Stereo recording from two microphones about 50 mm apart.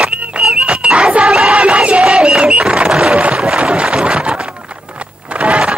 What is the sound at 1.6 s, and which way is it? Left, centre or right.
Battle cry, right.